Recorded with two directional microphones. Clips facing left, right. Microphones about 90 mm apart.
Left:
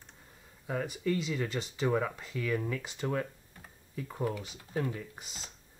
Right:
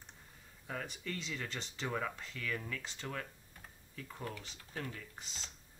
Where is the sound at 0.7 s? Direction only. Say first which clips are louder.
Left 10 dB; 10° left (ahead or behind).